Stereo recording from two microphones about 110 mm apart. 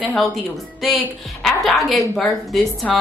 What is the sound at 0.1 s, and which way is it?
A woman's voice, centre (ahead or behind).